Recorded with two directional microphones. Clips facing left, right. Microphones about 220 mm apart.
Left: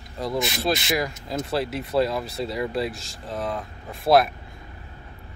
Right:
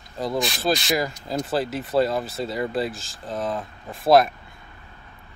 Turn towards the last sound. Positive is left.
turn(degrees=0)  # may be behind; listen again after turning